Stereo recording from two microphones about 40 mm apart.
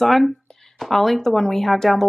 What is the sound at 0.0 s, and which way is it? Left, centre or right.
Speech, centre.